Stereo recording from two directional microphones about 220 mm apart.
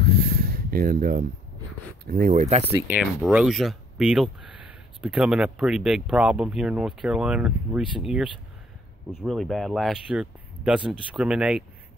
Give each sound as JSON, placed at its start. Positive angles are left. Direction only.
{"t": 0.0, "sound": "a sound", "side_deg": -45}
{"t": 2.0, "sound": "speech", "side_deg": -40}
{"t": 2.7, "sound": "speech", "side_deg": -5}